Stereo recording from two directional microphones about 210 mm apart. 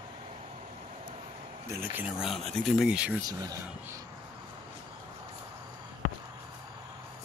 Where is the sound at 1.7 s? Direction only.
10° right (ahead or behind).